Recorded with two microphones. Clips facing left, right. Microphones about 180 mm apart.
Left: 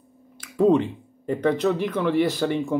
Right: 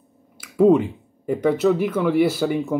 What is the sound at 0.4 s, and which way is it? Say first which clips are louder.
Speech: right 3 dB; 5° right (ahead or behind).